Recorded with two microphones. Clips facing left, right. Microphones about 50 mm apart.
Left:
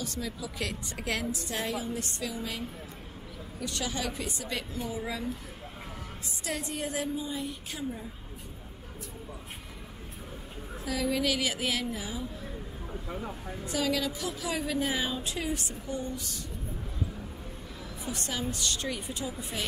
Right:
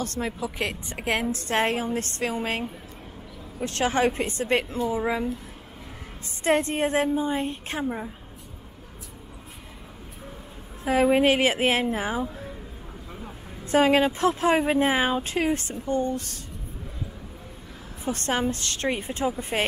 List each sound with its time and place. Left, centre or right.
0.0 s a woman's voice: right
0.4 s a woman's voice: right
1.3 s a woman's voice: right
4.9 s a woman's voice: right
6.4 s a woman's voice: right
10.9 s a woman's voice: right
13.7 s a woman's voice: right
18.0 s a woman's voice: right